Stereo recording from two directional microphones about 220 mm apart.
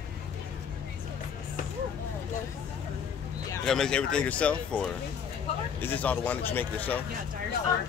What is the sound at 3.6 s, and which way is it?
Speech, centre (ahead or behind).